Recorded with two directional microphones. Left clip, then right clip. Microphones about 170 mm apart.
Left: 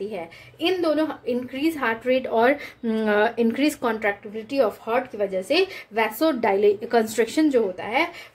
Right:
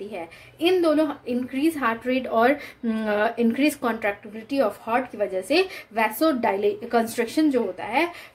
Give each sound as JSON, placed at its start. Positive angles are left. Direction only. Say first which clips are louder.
{"t": 0.1, "sound": "a woman's voice", "louder": "left 2 dB", "side_deg": 20}